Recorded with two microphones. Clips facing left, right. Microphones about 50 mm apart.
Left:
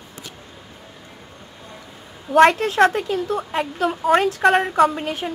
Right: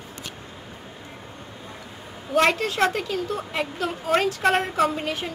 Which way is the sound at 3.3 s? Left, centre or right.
Centre.